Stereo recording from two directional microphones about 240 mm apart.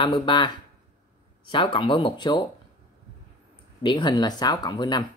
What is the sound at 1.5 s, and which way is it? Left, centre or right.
Speech, left.